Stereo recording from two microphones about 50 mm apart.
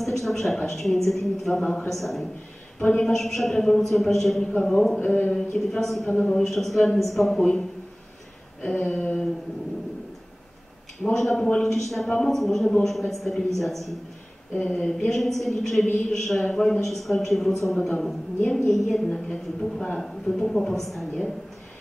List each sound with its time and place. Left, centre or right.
0.0 s a sound: centre
0.7 s a woman's voice: centre
2.8 s a woman's voice: centre
5.0 s speech: left
5.3 s a woman's voice: centre
6.0 s a sound: left
6.3 s a woman's voice: centre
8.6 s a sound: centre
11.1 s a woman's voice: centre